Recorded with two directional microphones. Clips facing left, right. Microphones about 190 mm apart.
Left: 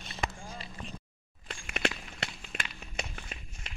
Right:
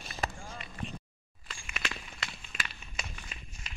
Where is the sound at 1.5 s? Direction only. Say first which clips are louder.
Left 7 dB; 65° left (ahead or behind).